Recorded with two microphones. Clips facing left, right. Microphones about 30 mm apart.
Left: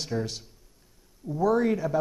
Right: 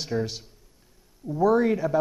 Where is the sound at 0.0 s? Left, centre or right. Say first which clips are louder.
Right 3 dB; centre.